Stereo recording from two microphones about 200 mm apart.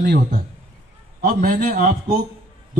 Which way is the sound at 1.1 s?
45° right (ahead or behind).